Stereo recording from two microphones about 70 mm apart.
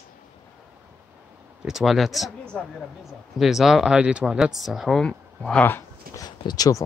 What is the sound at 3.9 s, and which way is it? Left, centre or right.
Speech, centre.